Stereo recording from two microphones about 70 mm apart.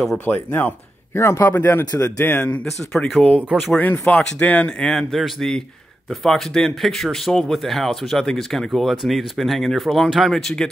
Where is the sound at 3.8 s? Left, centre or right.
Left.